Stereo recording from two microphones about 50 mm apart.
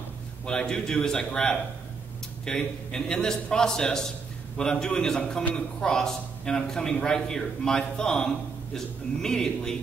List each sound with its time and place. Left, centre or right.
0.5 s a man's voice: centre